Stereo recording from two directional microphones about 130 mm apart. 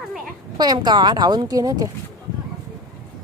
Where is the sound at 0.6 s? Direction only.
30° right (ahead or behind).